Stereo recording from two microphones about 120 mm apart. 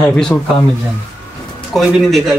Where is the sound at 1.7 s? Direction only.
Centre (ahead or behind).